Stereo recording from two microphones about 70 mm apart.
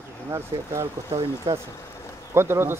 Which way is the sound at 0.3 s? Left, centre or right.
Right.